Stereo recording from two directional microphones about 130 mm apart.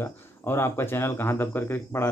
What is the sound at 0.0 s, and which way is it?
A man's voice, 20° left (ahead or behind).